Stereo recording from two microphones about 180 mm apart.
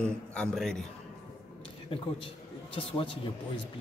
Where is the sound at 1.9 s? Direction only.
30° left (ahead or behind).